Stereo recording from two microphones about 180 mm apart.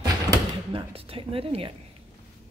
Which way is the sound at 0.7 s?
30° right (ahead or behind).